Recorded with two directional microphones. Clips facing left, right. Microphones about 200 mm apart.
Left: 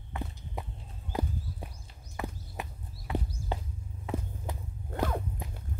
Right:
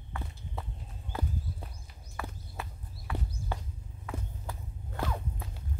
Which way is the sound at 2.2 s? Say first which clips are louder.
Left 3 dB; 20° left (ahead or behind).